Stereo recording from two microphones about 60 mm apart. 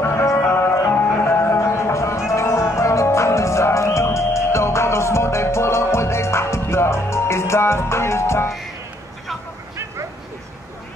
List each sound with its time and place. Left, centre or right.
0.4 s music: left